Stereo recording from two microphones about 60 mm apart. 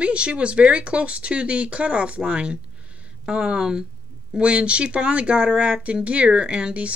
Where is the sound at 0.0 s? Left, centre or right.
Centre.